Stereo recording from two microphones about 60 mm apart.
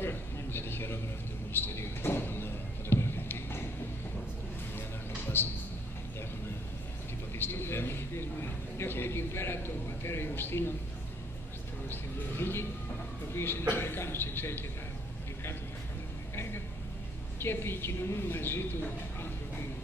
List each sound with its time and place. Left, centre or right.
0.0 s a sound: left
5.4 s a man's voice: left
7.3 s a man's voice: left
11.9 s a man's voice: left
17.4 s a woman's voice: left